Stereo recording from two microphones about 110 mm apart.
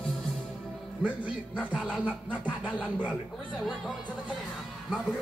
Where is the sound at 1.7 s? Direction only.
5° right (ahead or behind).